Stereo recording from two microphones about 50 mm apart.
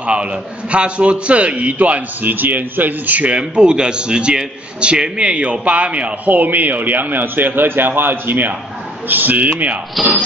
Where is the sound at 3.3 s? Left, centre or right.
Centre.